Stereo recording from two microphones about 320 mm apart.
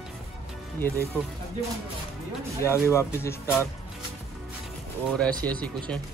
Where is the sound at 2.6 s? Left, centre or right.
Centre.